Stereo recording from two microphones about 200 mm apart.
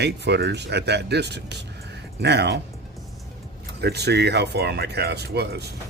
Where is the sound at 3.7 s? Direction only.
55° right (ahead or behind).